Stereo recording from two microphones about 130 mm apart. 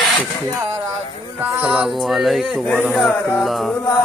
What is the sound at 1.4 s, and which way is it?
Speech, 5° right (ahead or behind).